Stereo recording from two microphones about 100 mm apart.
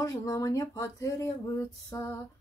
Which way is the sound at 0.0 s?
35° left (ahead or behind).